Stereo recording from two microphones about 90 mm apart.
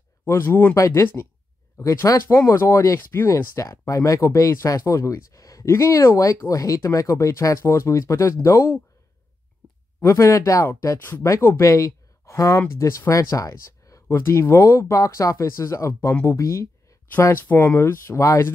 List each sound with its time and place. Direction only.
0.2 s speech: 25° left (ahead or behind)
0.7 s speech: 35° left (ahead or behind)
9.6 s a sound: 15° left (ahead or behind)
10.0 s speech: 35° left (ahead or behind)
14.0 s speech: 25° left (ahead or behind)